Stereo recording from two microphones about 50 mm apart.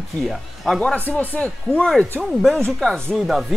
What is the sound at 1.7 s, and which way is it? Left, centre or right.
Speech, centre.